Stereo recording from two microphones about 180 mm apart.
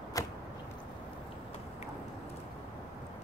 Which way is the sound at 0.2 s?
20° left (ahead or behind).